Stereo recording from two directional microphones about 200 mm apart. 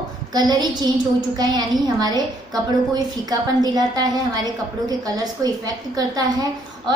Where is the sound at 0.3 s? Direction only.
20° right (ahead or behind).